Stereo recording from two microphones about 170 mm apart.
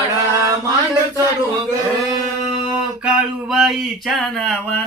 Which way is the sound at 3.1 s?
5° right (ahead or behind).